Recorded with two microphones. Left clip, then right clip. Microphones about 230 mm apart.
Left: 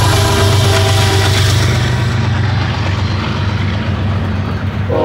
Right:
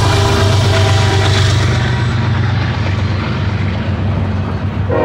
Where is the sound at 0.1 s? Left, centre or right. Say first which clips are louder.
Left 1 dB; left.